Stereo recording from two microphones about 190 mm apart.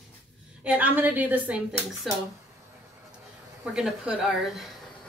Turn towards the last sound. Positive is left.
turn(degrees=-5)  # may be behind; listen again after turning